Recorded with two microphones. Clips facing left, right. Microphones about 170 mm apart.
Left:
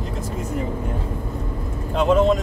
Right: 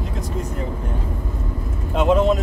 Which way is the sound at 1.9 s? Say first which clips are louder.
Even; centre (ahead or behind).